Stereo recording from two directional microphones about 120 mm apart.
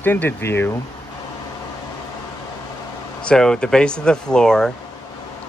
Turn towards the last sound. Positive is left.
turn(degrees=5)  # may be behind; listen again after turning